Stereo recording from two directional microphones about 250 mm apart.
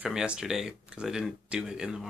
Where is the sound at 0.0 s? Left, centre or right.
Centre.